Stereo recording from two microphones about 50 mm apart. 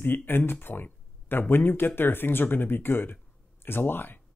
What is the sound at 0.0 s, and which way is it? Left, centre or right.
Speech, left.